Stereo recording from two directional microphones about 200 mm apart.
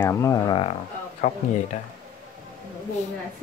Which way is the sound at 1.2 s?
35° left (ahead or behind).